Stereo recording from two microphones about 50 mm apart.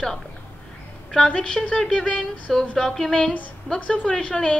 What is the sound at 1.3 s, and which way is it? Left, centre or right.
A woman's voice, centre.